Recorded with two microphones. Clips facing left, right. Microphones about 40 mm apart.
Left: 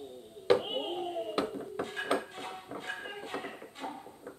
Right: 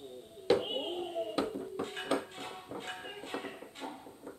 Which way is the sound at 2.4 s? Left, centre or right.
Centre.